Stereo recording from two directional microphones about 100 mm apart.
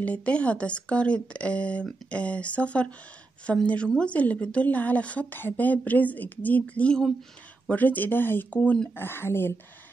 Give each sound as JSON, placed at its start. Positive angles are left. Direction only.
{"t": 0.0, "sound": "a woman's voice", "side_deg": 15}
{"t": 8.9, "sound": "speech", "side_deg": 20}